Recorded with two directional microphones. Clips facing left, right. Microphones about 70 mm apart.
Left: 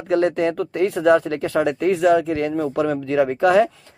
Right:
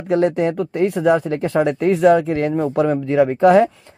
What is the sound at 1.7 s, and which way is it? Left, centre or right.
Speech, right.